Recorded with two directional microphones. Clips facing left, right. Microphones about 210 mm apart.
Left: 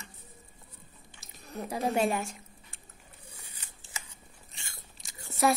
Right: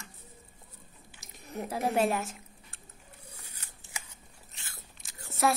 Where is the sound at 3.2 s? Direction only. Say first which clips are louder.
Left 1 dB; 10° left (ahead or behind).